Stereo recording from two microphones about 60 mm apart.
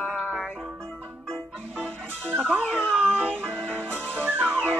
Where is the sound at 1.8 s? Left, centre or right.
Right.